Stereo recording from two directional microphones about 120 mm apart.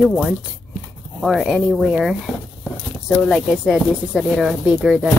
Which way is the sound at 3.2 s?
5° left (ahead or behind).